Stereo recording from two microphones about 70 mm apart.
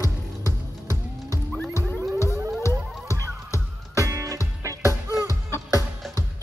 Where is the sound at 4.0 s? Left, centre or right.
Right.